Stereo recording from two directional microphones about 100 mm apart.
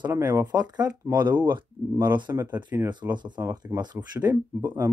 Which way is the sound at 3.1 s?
50° right (ahead or behind).